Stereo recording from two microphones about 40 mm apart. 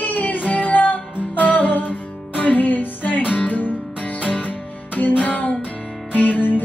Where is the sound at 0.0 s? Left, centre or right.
Left.